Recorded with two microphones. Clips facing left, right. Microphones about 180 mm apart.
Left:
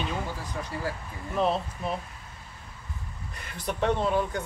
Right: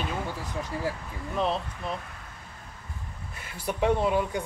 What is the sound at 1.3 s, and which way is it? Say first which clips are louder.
Speech: left 2 dB; 5° left (ahead or behind).